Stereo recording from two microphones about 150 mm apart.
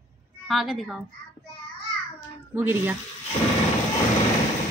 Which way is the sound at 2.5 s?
15° right (ahead or behind).